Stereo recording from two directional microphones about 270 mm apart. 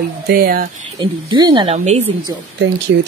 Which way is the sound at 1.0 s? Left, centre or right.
Centre.